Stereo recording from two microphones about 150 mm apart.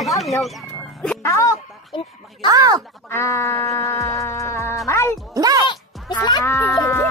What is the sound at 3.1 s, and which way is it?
Music, 15° left (ahead or behind).